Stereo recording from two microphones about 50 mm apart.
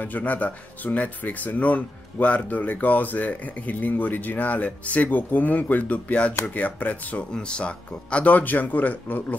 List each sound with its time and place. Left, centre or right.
0.0 s speech: left
7.3 s speech: centre